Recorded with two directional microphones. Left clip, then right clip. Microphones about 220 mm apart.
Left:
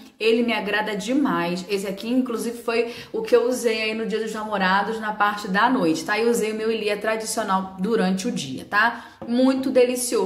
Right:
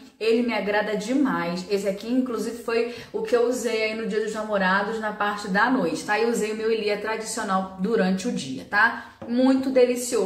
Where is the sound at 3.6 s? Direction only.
50° left (ahead or behind).